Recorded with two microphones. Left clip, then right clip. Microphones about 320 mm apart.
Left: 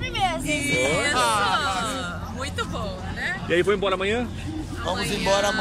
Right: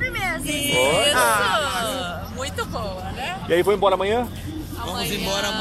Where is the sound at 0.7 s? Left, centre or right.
Right.